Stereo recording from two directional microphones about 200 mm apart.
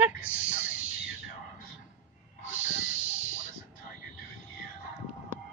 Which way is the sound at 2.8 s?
80° right.